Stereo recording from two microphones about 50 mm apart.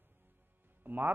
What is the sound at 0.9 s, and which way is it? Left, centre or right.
Speech, right.